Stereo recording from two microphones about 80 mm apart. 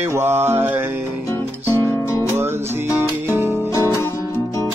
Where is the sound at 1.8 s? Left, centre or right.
Left.